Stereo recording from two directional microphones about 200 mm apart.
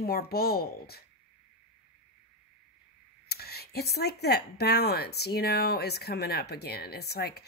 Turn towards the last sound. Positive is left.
turn(degrees=55)  # may be behind; listen again after turning